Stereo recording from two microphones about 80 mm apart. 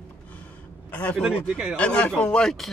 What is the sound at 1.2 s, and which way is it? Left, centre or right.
Speech, centre.